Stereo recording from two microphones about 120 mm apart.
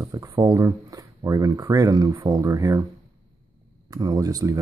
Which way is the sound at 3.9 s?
30° right (ahead or behind).